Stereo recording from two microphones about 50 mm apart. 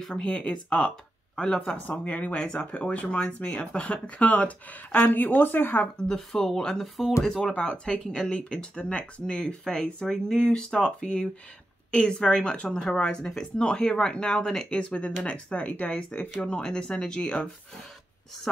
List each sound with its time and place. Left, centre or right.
0.0 s speech: centre
1.9 s speech: left
5.9 s speech: centre
6.8 s speech: centre
7.5 s speech: centre